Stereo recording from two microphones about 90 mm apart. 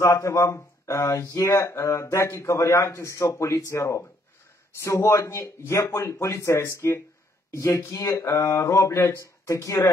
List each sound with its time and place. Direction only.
0.0 s a man's voice: 35° left (ahead or behind)